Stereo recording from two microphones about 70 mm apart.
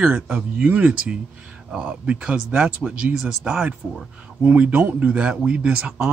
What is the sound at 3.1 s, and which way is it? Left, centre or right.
Speech, centre.